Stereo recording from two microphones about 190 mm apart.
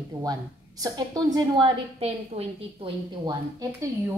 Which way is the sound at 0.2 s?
20° right (ahead or behind).